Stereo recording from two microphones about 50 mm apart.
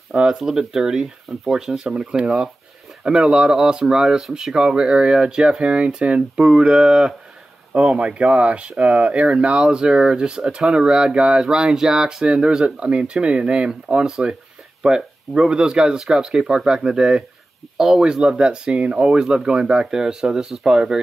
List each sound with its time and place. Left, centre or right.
0.1 s speech: centre
0.4 s speech: centre